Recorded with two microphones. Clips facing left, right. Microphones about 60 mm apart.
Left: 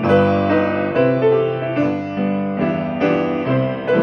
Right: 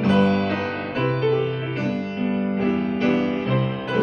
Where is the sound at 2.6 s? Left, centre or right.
Left.